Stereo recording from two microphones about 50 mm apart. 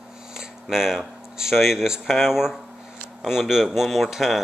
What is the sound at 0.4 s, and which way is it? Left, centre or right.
Speech, centre.